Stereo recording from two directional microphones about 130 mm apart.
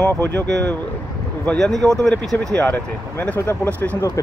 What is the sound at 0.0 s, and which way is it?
Speech, 15° left (ahead or behind).